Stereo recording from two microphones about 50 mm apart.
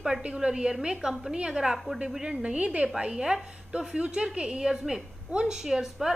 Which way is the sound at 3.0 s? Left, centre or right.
Centre.